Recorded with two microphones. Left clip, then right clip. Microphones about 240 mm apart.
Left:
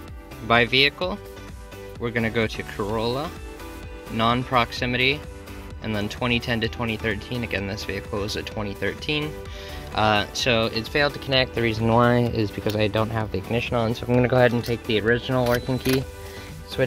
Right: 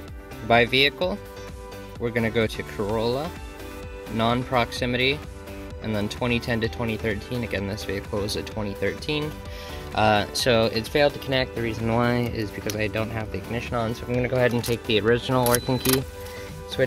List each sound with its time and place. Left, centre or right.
0.5 s speech: centre
11.0 s speech: centre
11.5 s speech: centre
14.5 s speech: centre